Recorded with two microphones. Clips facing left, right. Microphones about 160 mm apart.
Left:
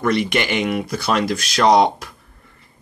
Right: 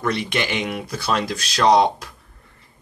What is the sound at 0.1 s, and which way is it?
Speech, 65° left (ahead or behind).